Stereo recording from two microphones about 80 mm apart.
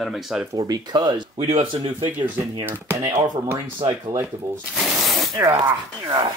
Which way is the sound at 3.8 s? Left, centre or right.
Right.